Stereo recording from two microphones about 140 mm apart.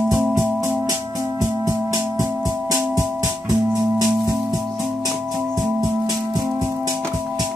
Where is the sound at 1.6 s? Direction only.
25° right (ahead or behind).